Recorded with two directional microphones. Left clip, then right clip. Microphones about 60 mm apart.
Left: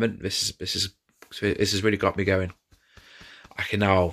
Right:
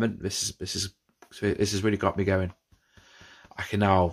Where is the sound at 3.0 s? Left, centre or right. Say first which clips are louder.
Left 4 dB; right.